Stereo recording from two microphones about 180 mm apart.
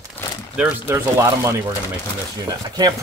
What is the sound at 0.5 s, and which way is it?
Speech, 15° right (ahead or behind).